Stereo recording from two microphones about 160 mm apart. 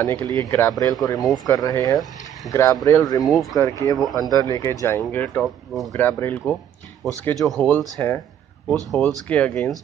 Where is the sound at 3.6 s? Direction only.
20° left (ahead or behind); by 6.0 s centre (ahead or behind).